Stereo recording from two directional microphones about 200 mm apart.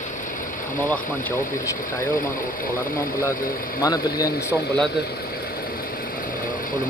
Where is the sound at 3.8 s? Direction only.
15° left (ahead or behind).